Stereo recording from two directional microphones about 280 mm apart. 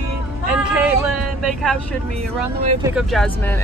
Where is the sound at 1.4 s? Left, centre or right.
Centre.